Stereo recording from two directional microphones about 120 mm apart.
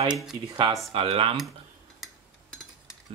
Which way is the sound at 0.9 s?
50° right (ahead or behind).